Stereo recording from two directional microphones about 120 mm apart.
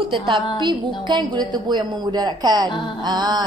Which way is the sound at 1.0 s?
40° right (ahead or behind).